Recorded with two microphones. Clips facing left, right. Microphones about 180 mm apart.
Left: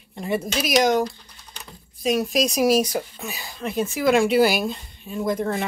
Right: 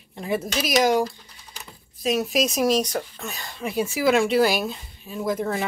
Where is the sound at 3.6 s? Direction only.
5° right (ahead or behind).